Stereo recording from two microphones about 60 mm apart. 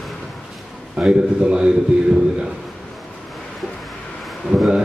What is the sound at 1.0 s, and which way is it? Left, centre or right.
Speech, centre.